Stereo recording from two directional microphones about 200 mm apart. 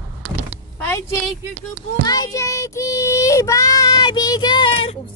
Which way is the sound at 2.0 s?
20° left (ahead or behind).